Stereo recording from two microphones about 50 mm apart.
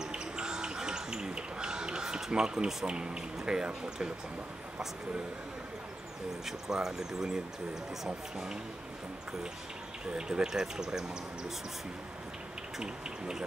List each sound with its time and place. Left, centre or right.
0.0 s bird: centre
6.4 s speech: centre
10.1 s speech: centre
12.7 s speech: centre